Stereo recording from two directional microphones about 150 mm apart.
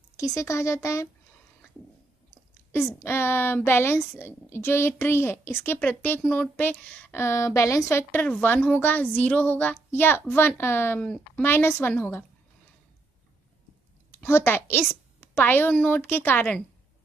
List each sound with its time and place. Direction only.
0.2 s speech: 20° left (ahead or behind)
2.7 s a woman's voice: 15° left (ahead or behind)
14.1 s a woman's voice: 15° left (ahead or behind)